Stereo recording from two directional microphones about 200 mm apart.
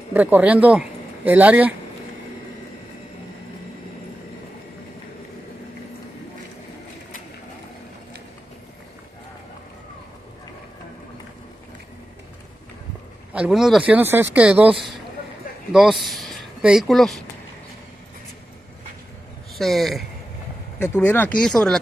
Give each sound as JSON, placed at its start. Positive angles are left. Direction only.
{"t": 0.1, "sound": "speech", "side_deg": -10}
{"t": 13.3, "sound": "speech", "side_deg": -5}
{"t": 19.6, "sound": "speech", "side_deg": 0}